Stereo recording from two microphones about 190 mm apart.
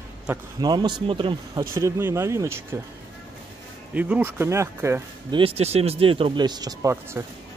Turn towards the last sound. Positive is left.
turn(degrees=-15)  # may be behind; listen again after turning